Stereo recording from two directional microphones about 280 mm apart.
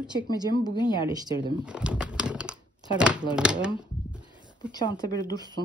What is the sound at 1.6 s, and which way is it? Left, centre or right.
Crumpling, centre.